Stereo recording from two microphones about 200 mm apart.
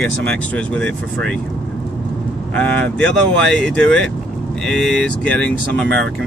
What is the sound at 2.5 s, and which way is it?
Speech, 5° left (ahead or behind).